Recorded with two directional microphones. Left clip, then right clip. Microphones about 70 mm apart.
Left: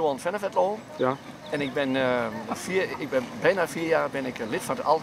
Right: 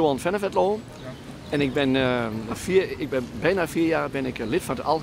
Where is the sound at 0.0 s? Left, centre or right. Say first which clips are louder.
Right 3 dB; right.